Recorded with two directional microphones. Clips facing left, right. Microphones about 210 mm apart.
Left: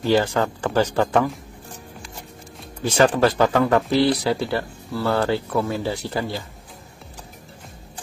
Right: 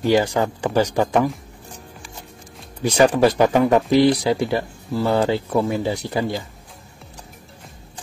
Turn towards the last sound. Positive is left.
turn(degrees=-15)  # may be behind; listen again after turning